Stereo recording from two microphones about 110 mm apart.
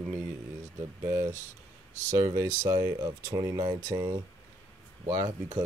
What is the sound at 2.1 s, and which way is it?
Speech, 30° right (ahead or behind).